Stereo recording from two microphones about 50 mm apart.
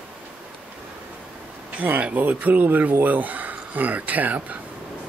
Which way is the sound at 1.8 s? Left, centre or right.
Right.